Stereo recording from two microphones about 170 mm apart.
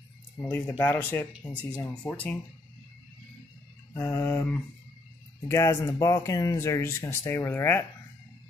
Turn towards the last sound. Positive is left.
turn(degrees=15)  # may be behind; listen again after turning